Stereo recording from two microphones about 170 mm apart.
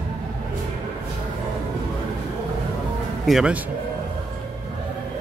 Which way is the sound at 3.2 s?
5° right (ahead or behind).